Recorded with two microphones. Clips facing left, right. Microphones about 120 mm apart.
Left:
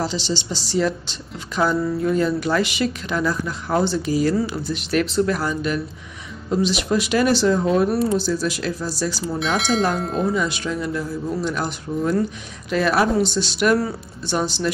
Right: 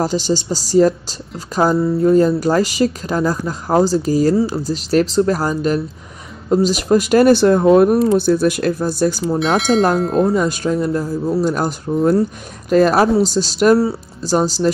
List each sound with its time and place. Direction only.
0.0 s speech: 45° right (ahead or behind)
9.6 s speech: centre (ahead or behind)
10.3 s speech: 45° right (ahead or behind)